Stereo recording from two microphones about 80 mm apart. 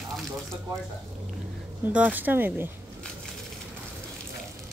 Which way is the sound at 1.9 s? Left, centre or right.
Centre.